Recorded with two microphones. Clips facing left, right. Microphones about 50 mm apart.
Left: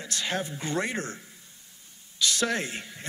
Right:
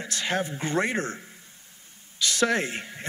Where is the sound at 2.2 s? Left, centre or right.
Right.